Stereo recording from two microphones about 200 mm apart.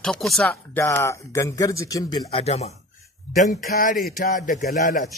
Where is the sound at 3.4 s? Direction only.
45° left (ahead or behind).